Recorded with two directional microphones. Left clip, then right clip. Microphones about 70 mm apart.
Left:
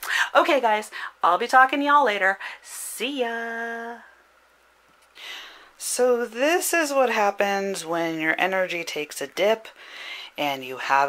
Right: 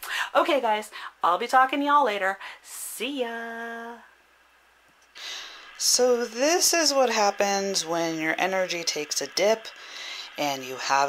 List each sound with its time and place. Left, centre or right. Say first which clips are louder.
0.0 s speech: left 4 dB; left
5.2 s gasp: right 1 dB; centre
5.9 s speech: left 2 dB; centre
9.8 s a sound: even; centre